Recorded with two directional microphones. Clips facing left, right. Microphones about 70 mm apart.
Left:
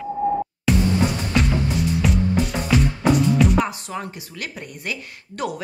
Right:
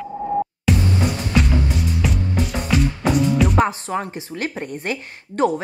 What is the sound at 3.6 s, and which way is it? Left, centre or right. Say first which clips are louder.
A woman's voice: right 4 dB; right.